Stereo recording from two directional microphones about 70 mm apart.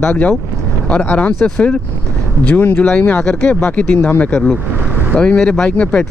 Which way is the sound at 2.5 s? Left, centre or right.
Left.